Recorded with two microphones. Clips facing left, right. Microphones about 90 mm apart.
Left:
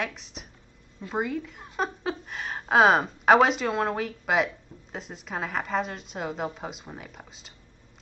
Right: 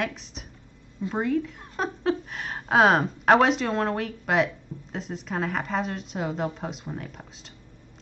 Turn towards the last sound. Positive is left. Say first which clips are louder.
# right 3 dB
turn(degrees=0)  # may be behind; listen again after turning